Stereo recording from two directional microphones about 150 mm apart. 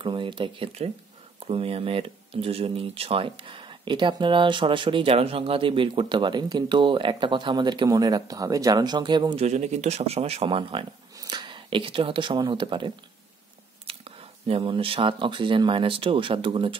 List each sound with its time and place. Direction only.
0.0 s speech: 35° right (ahead or behind)
9.4 s speech: 50° right (ahead or behind)